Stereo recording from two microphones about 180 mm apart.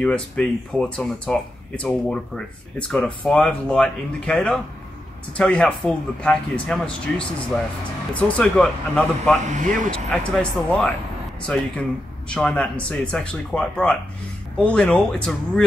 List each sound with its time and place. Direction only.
0.0 s speech: 5° left (ahead or behind)
9.4 s speech: 45° right (ahead or behind)
9.8 s speech: 5° left (ahead or behind)